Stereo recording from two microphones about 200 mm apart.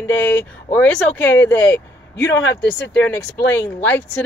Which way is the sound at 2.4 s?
65° left (ahead or behind).